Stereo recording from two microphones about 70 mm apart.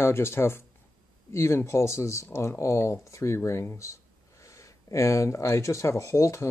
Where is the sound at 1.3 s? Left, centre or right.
Left.